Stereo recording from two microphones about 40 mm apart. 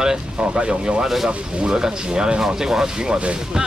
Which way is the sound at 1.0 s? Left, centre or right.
Centre.